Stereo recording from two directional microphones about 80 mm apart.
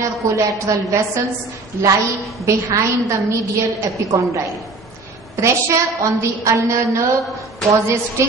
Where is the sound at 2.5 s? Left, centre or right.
Right.